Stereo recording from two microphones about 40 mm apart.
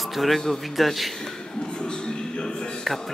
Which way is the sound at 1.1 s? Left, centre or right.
Centre.